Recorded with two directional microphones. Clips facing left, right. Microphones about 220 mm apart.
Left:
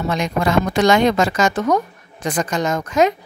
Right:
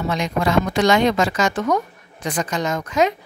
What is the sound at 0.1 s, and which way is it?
A woman's voice, 50° left (ahead or behind).